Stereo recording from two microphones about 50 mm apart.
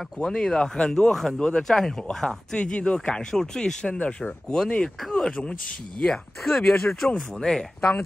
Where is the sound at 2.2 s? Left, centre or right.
Left.